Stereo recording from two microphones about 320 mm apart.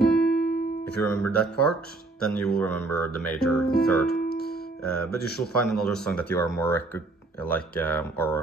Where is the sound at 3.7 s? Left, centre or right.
Left.